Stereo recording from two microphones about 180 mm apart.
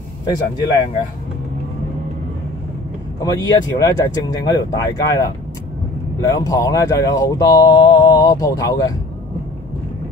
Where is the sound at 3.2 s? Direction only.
20° left (ahead or behind).